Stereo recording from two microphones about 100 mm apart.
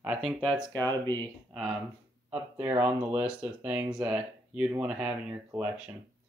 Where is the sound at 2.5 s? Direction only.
25° right (ahead or behind).